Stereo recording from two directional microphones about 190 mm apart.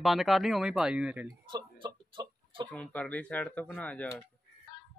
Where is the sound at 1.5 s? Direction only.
25° right (ahead or behind).